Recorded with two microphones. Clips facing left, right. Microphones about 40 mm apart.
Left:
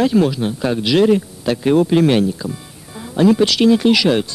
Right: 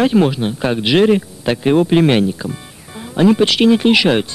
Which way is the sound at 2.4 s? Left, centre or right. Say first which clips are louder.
Right 1 dB; right.